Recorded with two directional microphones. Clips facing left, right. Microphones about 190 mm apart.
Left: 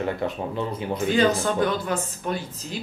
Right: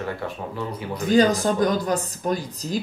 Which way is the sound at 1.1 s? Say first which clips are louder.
Right 4 dB; 40° right (ahead or behind).